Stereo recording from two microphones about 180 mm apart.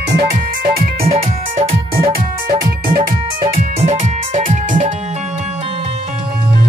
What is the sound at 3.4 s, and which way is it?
Music, 35° right (ahead or behind).